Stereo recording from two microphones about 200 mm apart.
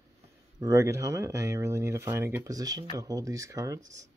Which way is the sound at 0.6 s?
15° right (ahead or behind).